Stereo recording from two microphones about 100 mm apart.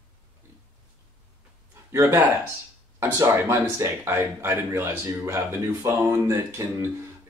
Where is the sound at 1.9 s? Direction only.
25° right (ahead or behind).